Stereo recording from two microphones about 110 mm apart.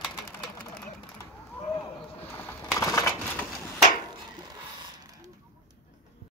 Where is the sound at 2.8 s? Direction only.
30° left (ahead or behind).